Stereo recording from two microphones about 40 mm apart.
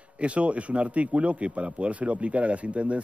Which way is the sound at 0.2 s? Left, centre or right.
Right.